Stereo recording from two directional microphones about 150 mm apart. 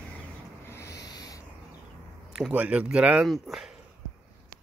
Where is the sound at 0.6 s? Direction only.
20° left (ahead or behind).